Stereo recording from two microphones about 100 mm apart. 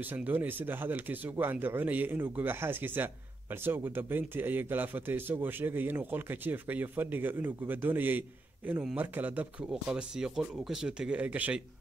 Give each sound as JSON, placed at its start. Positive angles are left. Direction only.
{"t": 0.1, "sound": "a man's voice", "side_deg": -20}
{"t": 9.7, "sound": "speech", "side_deg": -5}